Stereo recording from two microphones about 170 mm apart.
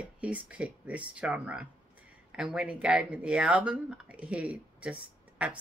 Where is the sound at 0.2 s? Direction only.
5° right (ahead or behind).